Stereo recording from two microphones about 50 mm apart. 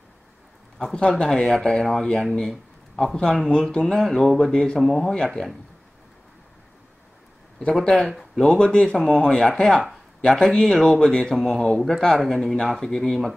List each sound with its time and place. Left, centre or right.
0.7 s a man's voice: centre
5.1 s speech: centre
8.4 s speech: centre
12.0 s speech: centre